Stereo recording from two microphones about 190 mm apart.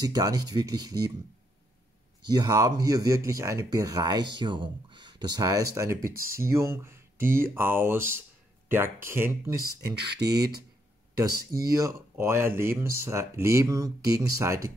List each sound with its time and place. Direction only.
0.0 s speech: 20° right (ahead or behind)
2.2 s speech: 20° right (ahead or behind)
10.1 s speech: 60° right (ahead or behind)
11.1 s speech: 15° right (ahead or behind)